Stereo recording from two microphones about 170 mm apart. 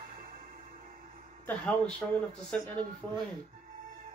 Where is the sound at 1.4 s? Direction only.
5° left (ahead or behind).